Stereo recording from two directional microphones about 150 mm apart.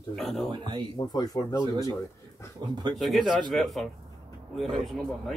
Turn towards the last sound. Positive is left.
turn(degrees=5)  # may be behind; listen again after turning